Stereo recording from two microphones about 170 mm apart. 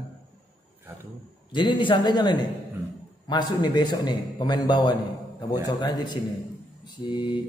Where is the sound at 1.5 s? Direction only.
30° left (ahead or behind).